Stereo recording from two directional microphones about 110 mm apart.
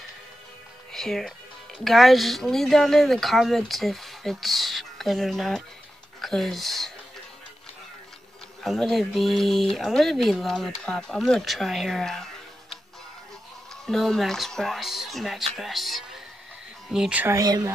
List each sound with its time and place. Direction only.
0.9 s speech: 5° left (ahead or behind)
8.6 s speech: centre (ahead or behind)
13.8 s speech: 5° left (ahead or behind)
17.4 s speech: 35° right (ahead or behind)